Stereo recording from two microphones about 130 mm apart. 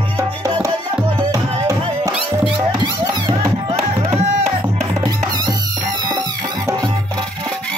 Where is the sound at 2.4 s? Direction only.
35° right (ahead or behind).